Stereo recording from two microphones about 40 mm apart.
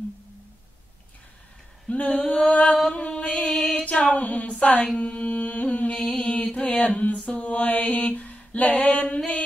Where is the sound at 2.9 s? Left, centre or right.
Left.